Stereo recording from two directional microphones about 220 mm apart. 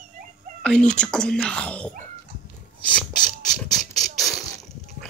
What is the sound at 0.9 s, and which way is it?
Speech, 5° left (ahead or behind).